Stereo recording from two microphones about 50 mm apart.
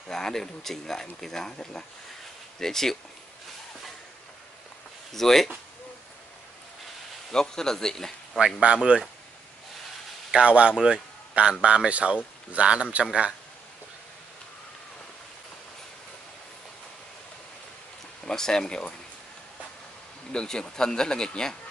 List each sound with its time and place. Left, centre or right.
0.1 s speech: centre
5.1 s speech: centre
7.2 s speech: centre
8.5 s speech: right
10.3 s speech: right
18.2 s speech: centre
20.3 s speech: centre